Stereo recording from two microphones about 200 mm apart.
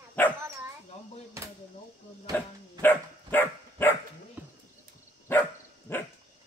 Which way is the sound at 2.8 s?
10° left (ahead or behind).